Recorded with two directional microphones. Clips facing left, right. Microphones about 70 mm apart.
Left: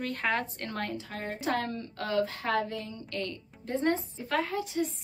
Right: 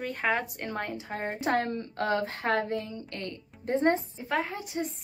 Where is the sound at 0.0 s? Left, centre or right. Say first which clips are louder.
Right 1 dB; centre.